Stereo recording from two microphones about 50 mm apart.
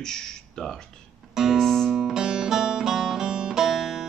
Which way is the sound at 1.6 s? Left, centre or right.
Centre.